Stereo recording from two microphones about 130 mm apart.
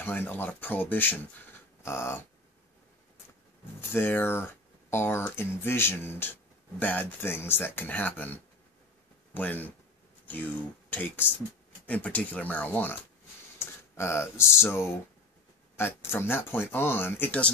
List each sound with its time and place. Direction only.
0.0 s speech: 15° left (ahead or behind)
1.8 s dog: 20° left (ahead or behind)
3.9 s speech: 15° left (ahead or behind)